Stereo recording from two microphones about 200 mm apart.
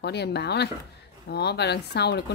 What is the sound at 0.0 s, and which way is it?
A woman's voice, 55° left (ahead or behind).